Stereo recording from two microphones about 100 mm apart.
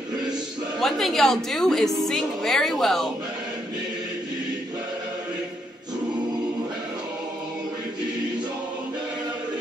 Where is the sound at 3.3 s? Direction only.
40° right (ahead or behind).